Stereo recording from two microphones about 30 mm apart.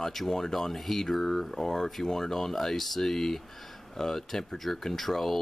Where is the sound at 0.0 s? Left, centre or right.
Centre.